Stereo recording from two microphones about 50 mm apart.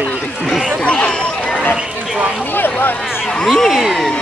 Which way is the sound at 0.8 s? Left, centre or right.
Left.